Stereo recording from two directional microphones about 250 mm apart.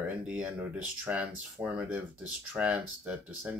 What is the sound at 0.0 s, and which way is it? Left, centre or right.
Speech, centre.